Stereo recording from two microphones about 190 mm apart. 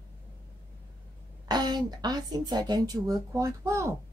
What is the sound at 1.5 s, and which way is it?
A woman's voice, 20° right (ahead or behind).